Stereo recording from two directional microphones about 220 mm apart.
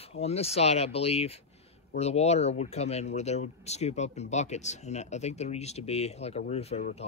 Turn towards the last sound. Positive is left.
turn(degrees=30)  # may be behind; listen again after turning